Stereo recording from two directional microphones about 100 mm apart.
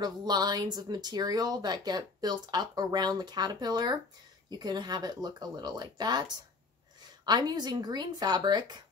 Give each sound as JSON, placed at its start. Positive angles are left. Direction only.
{"t": 0.0, "sound": "speech", "side_deg": -45}